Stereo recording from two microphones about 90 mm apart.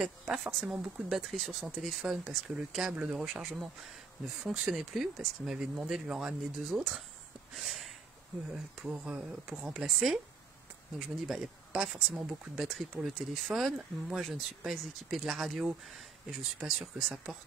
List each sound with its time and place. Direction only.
0.0 s speech: 5° right (ahead or behind)
7.5 s a sound: centre (ahead or behind)
8.8 s speech: 10° right (ahead or behind)
11.2 s speech: 5° right (ahead or behind)